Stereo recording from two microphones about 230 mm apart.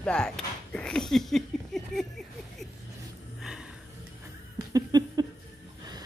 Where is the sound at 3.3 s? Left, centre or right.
Centre.